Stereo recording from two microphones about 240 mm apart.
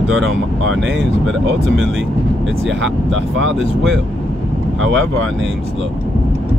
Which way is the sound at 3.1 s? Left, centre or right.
Right.